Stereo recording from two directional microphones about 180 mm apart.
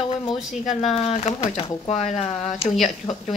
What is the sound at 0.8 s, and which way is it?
Speech, 35° left (ahead or behind).